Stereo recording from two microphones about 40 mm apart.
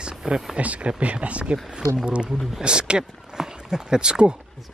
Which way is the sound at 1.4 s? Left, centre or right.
Centre.